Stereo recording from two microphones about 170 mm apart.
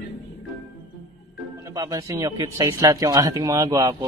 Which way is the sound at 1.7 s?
20° right (ahead or behind).